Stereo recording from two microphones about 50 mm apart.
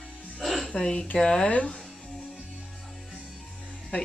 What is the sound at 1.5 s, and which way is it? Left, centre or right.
Speech, left.